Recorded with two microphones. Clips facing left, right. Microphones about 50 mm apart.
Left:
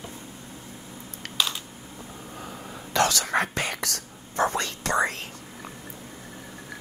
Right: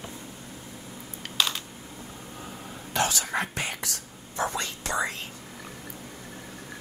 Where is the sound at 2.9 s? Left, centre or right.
Left.